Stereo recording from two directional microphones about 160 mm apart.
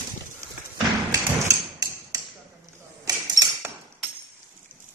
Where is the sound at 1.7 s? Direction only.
25° right (ahead or behind).